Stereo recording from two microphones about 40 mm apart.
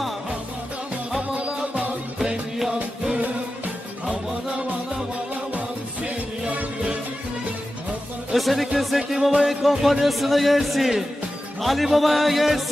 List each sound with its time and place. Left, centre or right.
4.0 s music: right
8.3 s speech: centre